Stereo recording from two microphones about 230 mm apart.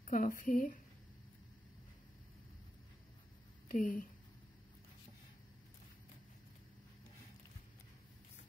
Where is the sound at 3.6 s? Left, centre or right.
Left.